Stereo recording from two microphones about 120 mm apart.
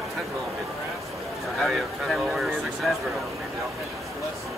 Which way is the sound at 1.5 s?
Centre (ahead or behind).